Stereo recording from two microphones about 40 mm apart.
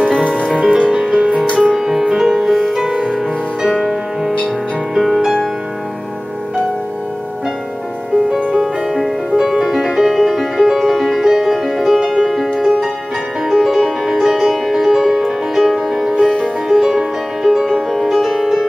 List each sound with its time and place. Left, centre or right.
0.6 s music: right
0.8 s music: centre
8.5 s music: centre
13.5 s music: centre